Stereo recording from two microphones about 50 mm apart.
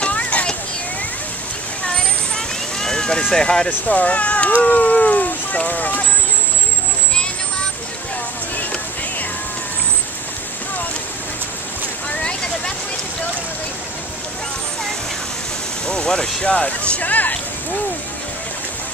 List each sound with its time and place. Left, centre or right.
0.0 s a sound: left
1.9 s vehicle: centre
3.8 s speech: left
12.1 s vehicle: centre
15.9 s speech: centre
16.4 s speech: left
16.9 s speech: left